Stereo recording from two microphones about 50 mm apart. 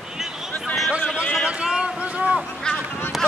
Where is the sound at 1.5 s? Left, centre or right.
Right.